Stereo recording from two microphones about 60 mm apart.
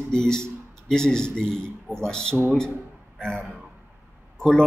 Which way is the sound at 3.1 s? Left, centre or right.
Centre.